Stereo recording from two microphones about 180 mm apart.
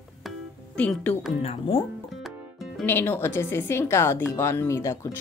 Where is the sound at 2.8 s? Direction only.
10° left (ahead or behind).